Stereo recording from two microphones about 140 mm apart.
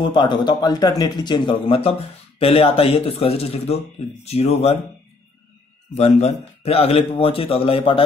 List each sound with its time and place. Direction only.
0.1 s speech: 35° left (ahead or behind)
5.9 s speech: 55° left (ahead or behind)